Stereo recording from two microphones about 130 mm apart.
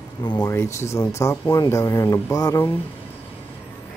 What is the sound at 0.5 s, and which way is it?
Speech, 20° left (ahead or behind).